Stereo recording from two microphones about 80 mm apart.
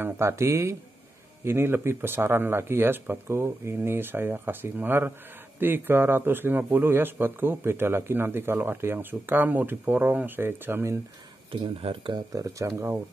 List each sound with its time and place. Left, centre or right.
0.0 s speech: right
11.5 s speech: right
12.3 s speech: right